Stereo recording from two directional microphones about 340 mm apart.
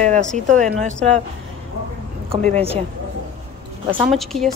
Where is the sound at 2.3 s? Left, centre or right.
Centre.